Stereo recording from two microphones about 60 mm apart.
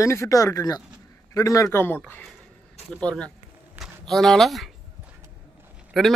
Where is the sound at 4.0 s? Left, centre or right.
Centre.